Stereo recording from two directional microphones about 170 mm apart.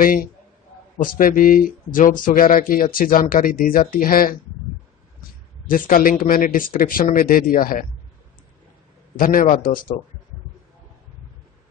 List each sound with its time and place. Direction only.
0.0 s speech: 55° left (ahead or behind)
5.7 s speech: 55° left (ahead or behind)
9.2 s speech: 55° left (ahead or behind)